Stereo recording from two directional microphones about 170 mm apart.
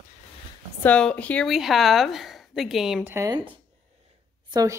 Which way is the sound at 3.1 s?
15° right (ahead or behind).